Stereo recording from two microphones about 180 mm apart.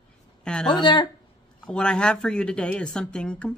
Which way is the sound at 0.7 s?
25° left (ahead or behind).